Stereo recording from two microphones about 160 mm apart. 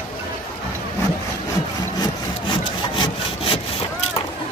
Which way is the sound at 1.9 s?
25° left (ahead or behind).